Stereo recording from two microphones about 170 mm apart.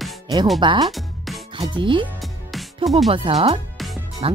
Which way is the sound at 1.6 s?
30° right (ahead or behind).